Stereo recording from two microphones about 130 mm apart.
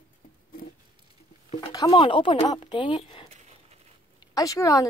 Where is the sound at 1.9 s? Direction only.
45° left (ahead or behind).